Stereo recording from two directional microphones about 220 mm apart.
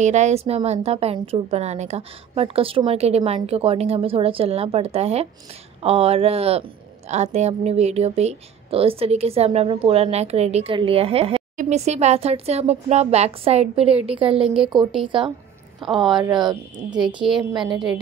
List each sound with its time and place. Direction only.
0.0 s a woman's voice: 30° right (ahead or behind)
17.2 s a woman's voice: 5° right (ahead or behind)